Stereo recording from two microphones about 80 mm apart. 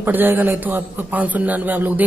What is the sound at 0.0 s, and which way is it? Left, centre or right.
A man's voice, right.